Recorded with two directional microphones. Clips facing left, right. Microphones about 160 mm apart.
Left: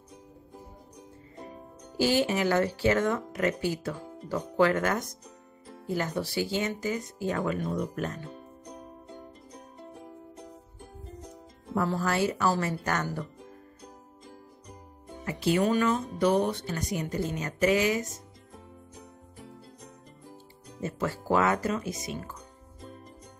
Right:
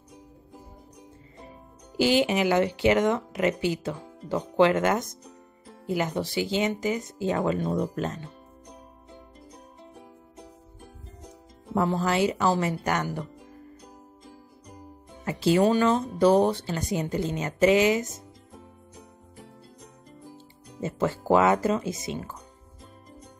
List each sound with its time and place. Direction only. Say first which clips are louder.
2.0 s speech: right 3 dB; 15° right (ahead or behind)
11.7 s speech: right 3 dB; 20° right (ahead or behind)
15.2 s speech: right 4 dB; 30° right (ahead or behind)
20.8 s speech: right 4 dB; 25° right (ahead or behind)